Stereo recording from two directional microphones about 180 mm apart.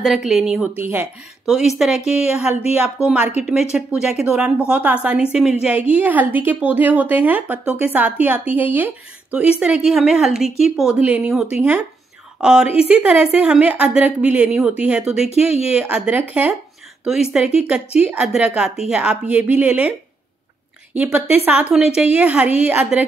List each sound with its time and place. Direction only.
0.0 s a woman's voice: centre (ahead or behind)
1.9 s a woman's voice: 40° left (ahead or behind)
2.2 s a woman's voice: 5° right (ahead or behind)
20.9 s speech: 10° right (ahead or behind)